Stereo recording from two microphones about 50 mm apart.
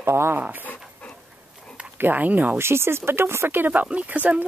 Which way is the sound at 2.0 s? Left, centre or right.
Right.